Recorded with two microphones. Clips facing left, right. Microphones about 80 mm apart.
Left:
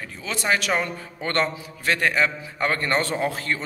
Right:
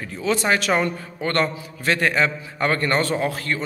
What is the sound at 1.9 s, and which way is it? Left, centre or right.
A man's voice, centre.